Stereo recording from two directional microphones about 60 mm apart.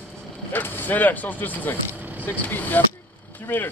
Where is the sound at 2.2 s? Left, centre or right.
Left.